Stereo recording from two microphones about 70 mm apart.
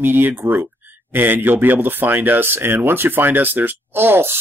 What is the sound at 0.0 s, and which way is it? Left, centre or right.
Speech, right.